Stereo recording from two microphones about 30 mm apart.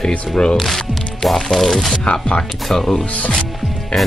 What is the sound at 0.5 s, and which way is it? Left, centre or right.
Speech, centre.